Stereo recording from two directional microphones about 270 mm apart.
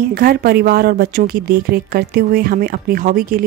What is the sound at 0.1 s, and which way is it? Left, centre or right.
A woman's voice, right.